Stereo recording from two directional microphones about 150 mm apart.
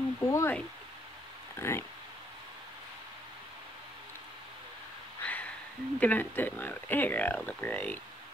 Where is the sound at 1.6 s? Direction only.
15° left (ahead or behind).